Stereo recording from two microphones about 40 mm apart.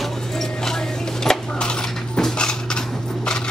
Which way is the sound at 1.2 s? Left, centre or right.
Centre.